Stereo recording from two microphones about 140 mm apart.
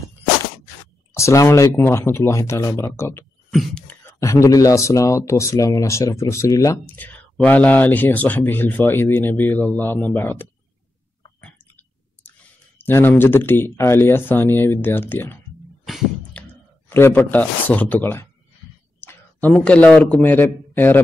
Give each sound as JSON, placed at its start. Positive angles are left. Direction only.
{"t": 1.1, "sound": "speech", "side_deg": 20}
{"t": 3.5, "sound": "speech", "side_deg": 5}
{"t": 4.0, "sound": "speech", "side_deg": 20}
{"t": 12.3, "sound": "speech", "side_deg": 15}
{"t": 16.3, "sound": "clicking", "side_deg": 10}
{"t": 16.9, "sound": "speech", "side_deg": 15}
{"t": 18.9, "sound": "clicking", "side_deg": 15}
{"t": 19.5, "sound": "speech", "side_deg": 10}